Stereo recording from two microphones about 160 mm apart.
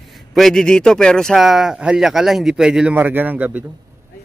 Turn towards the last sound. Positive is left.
turn(degrees=-10)  # may be behind; listen again after turning